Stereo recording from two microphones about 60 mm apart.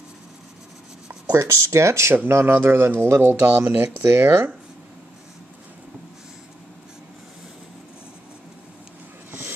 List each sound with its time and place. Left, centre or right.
1.4 s speech: right
2.2 s speech: right
4.1 s speech: right